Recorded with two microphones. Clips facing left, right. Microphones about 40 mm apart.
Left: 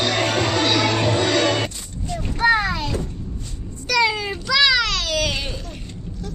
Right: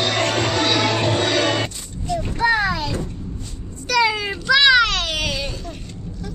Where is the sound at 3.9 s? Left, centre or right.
Centre; by 5.2 s right.